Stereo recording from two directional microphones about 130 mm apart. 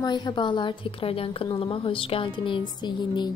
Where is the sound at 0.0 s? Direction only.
35° left (ahead or behind).